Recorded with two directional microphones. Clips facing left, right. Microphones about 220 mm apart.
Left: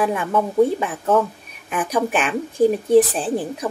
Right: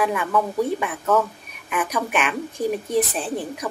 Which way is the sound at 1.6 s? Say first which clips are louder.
Left 4 dB; 30° left (ahead or behind).